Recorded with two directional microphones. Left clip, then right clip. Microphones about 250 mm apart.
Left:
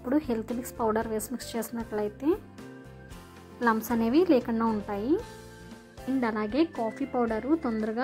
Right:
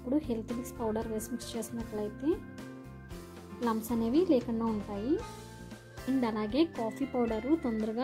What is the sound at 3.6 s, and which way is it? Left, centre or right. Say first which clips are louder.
Speech: left 6 dB; centre.